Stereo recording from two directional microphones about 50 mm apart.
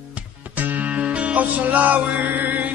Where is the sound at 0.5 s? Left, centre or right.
Right.